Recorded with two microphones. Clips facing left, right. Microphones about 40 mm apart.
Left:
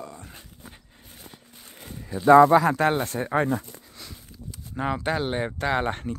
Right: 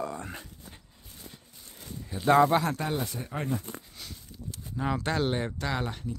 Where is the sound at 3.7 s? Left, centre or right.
Right.